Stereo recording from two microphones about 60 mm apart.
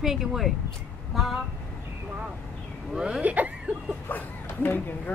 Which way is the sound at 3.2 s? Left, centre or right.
Right.